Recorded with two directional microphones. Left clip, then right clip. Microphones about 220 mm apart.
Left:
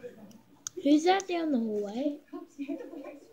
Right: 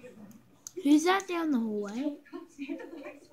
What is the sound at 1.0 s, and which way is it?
Speech, 20° right (ahead or behind).